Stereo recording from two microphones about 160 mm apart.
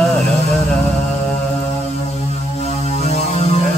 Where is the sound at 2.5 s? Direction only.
45° left (ahead or behind).